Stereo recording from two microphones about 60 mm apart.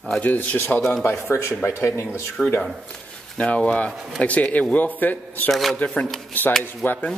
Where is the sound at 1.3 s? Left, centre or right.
Left.